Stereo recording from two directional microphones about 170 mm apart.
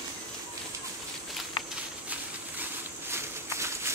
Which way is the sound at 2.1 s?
10° right (ahead or behind).